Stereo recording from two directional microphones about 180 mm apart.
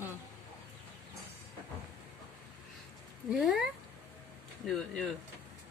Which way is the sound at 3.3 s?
Centre (ahead or behind).